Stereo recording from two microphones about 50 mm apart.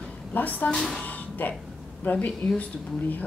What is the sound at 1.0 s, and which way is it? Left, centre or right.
Music, left.